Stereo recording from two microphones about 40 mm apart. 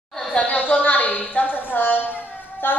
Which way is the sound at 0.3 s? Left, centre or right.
Left.